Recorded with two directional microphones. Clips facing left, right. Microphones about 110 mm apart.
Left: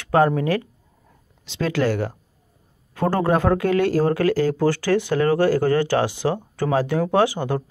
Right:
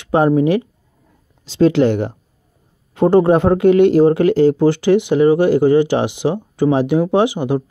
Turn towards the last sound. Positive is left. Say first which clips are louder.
# right 4 dB
turn(degrees=-15)  # may be behind; listen again after turning